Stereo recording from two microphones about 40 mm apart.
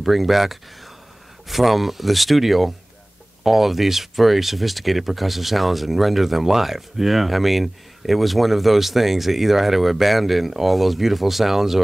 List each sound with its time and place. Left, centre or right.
0.0 s speech: centre